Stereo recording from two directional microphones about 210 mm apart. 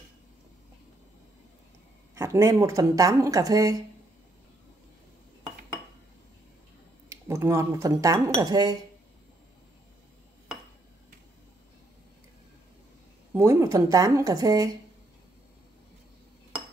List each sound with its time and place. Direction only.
2.1 s speech: 15° right (ahead or behind)
7.1 s speech: 15° right (ahead or behind)
13.3 s speech: 15° right (ahead or behind)